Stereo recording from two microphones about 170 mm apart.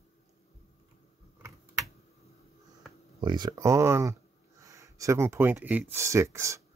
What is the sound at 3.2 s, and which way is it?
Speech, 25° right (ahead or behind).